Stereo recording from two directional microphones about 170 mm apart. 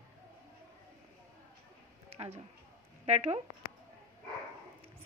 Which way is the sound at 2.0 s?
35° right (ahead or behind).